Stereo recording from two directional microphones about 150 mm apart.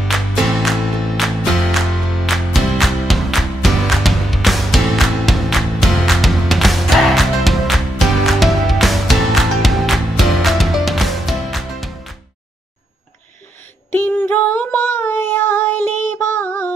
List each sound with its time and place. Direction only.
0.1 s music: centre (ahead or behind)
13.9 s child singing: 15° left (ahead or behind)